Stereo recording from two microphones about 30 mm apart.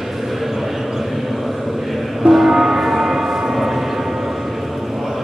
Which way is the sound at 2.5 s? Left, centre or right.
Centre.